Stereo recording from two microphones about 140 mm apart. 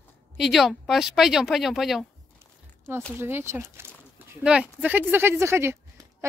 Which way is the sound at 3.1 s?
15° right (ahead or behind).